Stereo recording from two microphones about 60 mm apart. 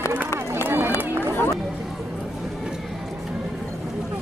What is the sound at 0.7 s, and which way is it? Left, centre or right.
Run, right.